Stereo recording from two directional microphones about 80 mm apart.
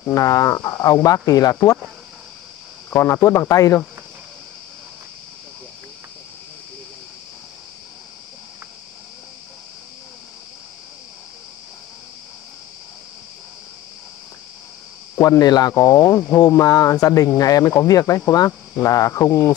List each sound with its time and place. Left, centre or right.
0.0 s speech: left
2.9 s a man's voice: left
3.2 s speech: left
15.2 s speech: left
15.7 s speech: left
16.3 s speech: left